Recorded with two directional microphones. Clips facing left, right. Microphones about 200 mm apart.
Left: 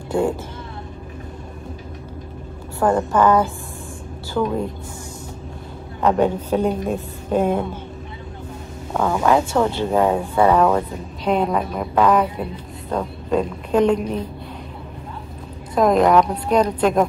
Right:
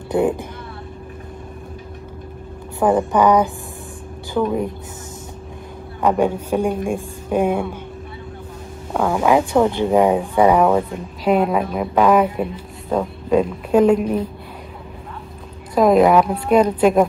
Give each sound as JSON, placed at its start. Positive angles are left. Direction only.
{"t": 0.1, "sound": "speech", "side_deg": -15}
{"t": 2.8, "sound": "speech", "side_deg": -15}
{"t": 6.0, "sound": "speech", "side_deg": -10}
{"t": 8.9, "sound": "a woman's voice", "side_deg": -10}
{"t": 15.7, "sound": "a woman's voice", "side_deg": -5}